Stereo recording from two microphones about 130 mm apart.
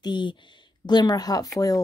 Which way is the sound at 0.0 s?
35° left (ahead or behind).